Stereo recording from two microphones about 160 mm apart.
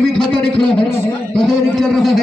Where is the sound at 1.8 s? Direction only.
Centre (ahead or behind).